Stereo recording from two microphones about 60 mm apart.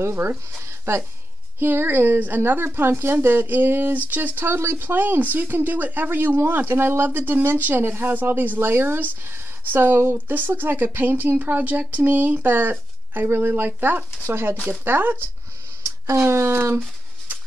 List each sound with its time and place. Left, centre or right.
0.0 s speech: right
16.1 s speech: right